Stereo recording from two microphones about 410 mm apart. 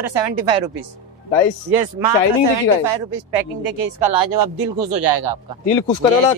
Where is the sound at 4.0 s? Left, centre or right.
Right.